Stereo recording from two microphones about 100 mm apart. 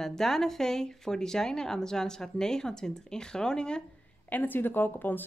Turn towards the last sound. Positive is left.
turn(degrees=20)  # may be behind; listen again after turning